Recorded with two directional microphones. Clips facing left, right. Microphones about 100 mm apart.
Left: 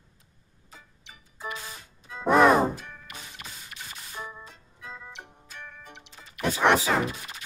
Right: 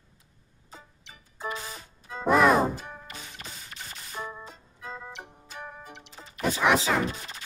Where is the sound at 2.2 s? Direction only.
Centre (ahead or behind).